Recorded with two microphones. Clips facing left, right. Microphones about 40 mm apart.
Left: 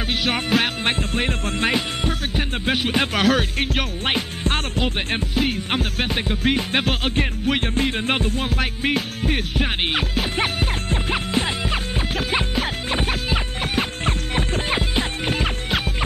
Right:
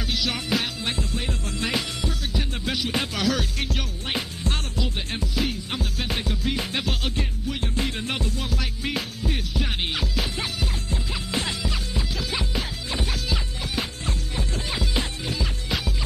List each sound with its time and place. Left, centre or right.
0.1 s music: left
6.0 s music: left
6.4 s music: left
7.8 s music: left
11.3 s music: left